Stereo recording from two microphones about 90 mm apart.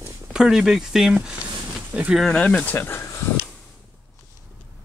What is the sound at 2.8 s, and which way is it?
Speech, 25° left (ahead or behind).